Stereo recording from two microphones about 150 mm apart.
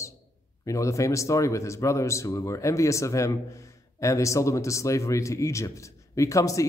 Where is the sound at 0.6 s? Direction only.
20° left (ahead or behind).